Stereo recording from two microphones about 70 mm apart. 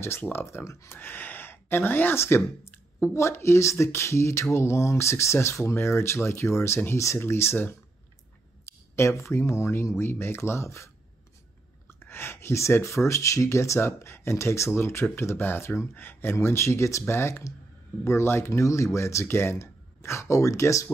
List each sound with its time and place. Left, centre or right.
0.0 s speech: left
0.9 s speech: left
11.9 s speech: left